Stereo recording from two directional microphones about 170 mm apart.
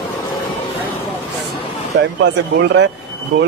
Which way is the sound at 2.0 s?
90° right.